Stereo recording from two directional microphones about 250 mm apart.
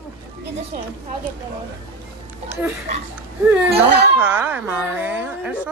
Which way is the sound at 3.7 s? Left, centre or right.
Right.